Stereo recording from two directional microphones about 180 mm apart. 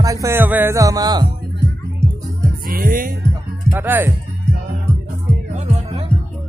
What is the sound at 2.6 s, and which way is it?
Speech, 50° right (ahead or behind).